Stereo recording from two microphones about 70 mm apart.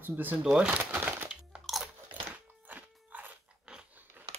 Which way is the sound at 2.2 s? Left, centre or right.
Right.